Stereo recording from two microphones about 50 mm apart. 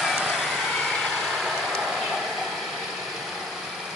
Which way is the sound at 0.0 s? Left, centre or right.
Centre.